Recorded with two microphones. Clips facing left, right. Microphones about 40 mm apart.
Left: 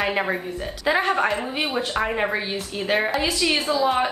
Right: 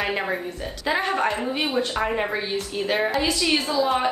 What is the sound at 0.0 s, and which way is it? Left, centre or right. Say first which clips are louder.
A woman's voice: left 2 dB; centre.